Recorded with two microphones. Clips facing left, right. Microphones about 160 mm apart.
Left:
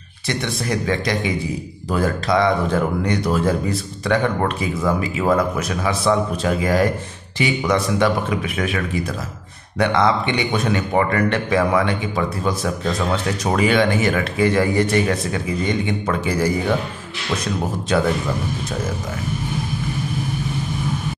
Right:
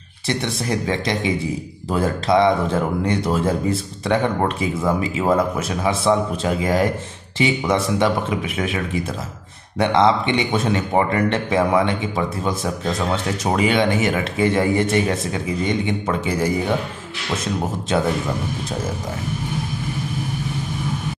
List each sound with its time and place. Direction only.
0.3 s a man's voice: 25° right (ahead or behind)